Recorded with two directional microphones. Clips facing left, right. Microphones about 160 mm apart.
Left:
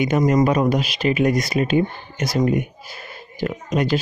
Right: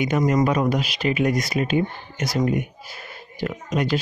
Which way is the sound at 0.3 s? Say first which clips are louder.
Left 3 dB; 30° left (ahead or behind).